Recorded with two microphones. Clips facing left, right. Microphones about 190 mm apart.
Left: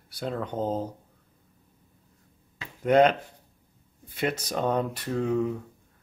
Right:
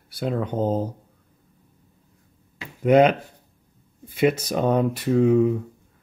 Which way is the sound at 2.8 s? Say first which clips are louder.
Right 4 dB; 10° right (ahead or behind).